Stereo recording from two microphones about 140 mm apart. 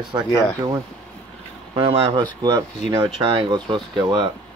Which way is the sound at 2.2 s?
30° right (ahead or behind).